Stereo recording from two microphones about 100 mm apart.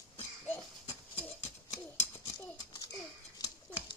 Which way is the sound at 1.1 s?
20° left (ahead or behind).